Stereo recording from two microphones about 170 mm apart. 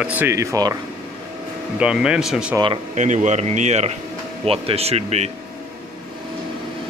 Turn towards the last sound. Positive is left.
turn(degrees=-40)  # may be behind; listen again after turning